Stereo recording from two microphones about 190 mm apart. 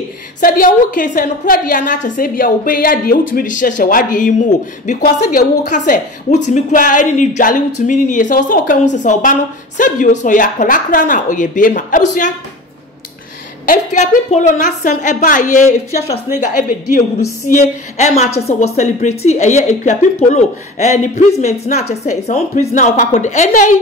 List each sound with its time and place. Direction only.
0.4 s speech: 45° left (ahead or behind)
13.7 s a woman's voice: 40° left (ahead or behind)